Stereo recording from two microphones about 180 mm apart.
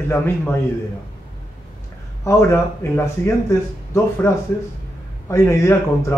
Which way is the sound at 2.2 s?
15° left (ahead or behind).